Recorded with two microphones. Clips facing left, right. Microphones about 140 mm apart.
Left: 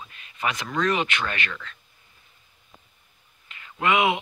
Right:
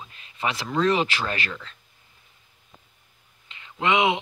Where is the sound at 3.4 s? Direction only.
25° right (ahead or behind).